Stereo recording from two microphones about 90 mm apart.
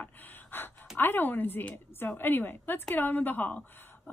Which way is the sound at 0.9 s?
20° left (ahead or behind).